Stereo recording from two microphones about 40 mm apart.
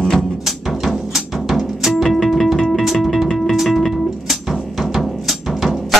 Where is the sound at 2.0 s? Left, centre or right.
Centre.